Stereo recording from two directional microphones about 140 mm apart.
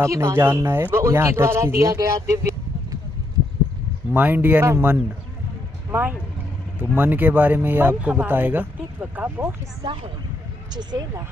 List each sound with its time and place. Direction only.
0.0 s speech: 20° right (ahead or behind)
4.1 s speech: 15° right (ahead or behind)
10.7 s speech: 30° right (ahead or behind)